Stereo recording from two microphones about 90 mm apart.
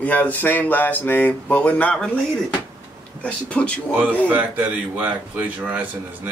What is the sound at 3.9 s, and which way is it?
A man's voice, 20° right (ahead or behind).